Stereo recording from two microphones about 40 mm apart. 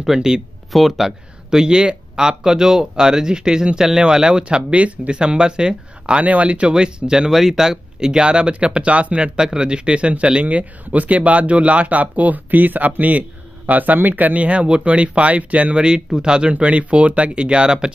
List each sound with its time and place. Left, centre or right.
0.0 s speech: centre
6.2 s speech: right
6.7 s speech: right
7.2 s speech: centre; by 9.3 s right
9.4 s speech: centre; by 15.7 s right
15.7 s speech: right